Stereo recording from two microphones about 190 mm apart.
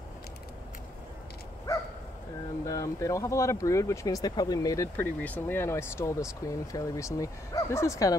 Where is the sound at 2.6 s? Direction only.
15° left (ahead or behind).